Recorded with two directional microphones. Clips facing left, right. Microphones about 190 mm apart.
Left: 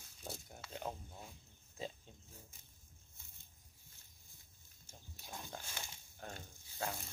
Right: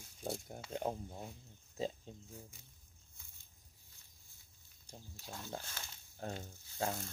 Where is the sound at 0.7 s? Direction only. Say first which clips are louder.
Right 6 dB; 30° right (ahead or behind).